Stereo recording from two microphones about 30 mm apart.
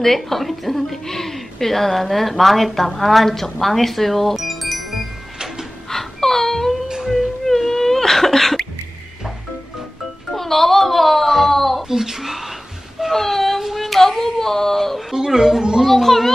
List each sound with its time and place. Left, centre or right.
0.0 s a woman's voice: centre
4.4 s music: centre
5.9 s wail: centre
6.9 s a sound: centre
7.4 s whimper: centre
10.3 s wail: centre
11.9 s a sound: centre
13.1 s a sound: centre
15.1 s speech: centre
15.8 s a child's voice: centre